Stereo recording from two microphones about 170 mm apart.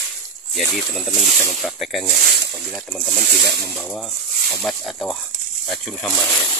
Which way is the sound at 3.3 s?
75° right (ahead or behind).